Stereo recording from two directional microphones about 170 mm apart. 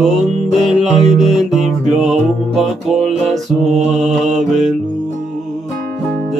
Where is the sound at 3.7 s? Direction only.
40° right (ahead or behind).